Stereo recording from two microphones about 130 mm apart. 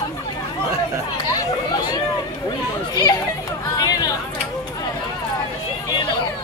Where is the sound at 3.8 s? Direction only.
30° left (ahead or behind).